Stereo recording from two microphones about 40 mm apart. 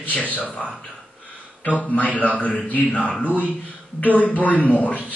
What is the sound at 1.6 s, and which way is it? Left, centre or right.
A man's voice, left.